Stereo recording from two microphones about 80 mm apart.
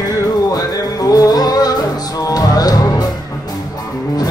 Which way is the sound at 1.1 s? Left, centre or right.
Left.